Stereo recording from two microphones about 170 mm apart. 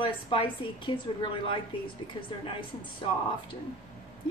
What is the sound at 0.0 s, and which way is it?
A woman's voice, 30° left (ahead or behind).